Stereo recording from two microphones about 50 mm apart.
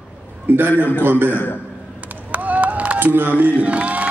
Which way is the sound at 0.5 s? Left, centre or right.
Right.